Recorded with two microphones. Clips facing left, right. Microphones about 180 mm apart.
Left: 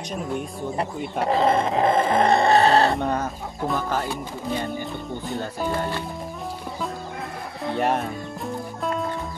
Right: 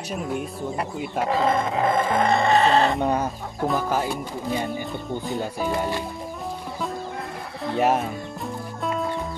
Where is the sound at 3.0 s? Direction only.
10° right (ahead or behind).